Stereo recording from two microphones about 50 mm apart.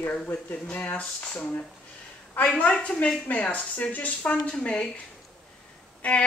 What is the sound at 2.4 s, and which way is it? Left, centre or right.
Speech, left.